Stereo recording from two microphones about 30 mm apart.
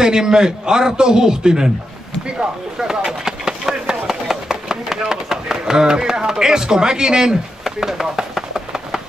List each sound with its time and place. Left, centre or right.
0.0 s a man's voice: right
7.6 s chopping: centre